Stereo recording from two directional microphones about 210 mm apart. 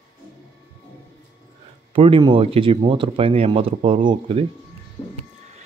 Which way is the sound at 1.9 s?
25° right (ahead or behind).